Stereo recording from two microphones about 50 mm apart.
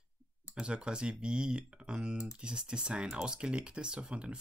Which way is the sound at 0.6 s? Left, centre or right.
Centre.